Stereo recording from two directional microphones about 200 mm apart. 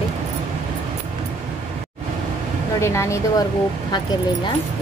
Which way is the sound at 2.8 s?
15° left (ahead or behind).